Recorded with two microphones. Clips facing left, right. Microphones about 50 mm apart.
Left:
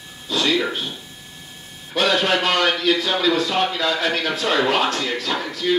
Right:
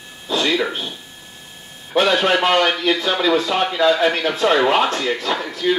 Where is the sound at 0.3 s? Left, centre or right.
Centre.